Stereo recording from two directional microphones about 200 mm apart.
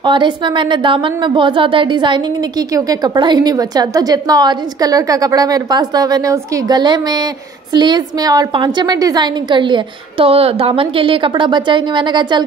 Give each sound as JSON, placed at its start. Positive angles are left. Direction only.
{"t": 0.0, "sound": "a woman's voice", "side_deg": -25}